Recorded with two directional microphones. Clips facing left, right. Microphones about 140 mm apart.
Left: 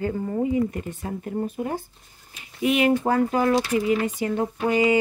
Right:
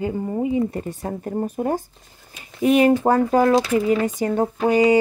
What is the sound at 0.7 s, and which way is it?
Speech, 35° right (ahead or behind).